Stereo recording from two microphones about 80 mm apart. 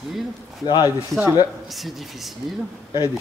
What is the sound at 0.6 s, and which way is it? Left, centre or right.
Speech, left.